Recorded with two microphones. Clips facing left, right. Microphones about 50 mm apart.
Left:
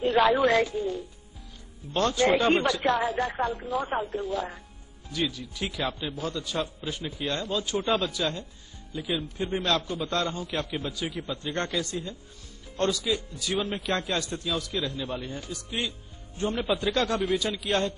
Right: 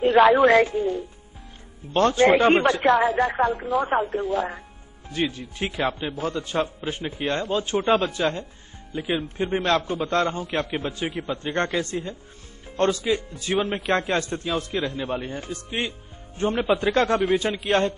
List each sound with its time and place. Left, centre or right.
0.0 s a man's voice: right